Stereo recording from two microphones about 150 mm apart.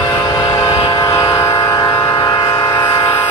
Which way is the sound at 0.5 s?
25° left (ahead or behind).